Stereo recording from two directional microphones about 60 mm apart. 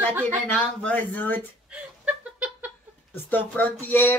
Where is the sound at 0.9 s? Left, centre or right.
Left.